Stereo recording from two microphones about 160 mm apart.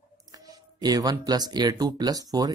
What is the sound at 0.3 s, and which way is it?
Speech, 25° right (ahead or behind).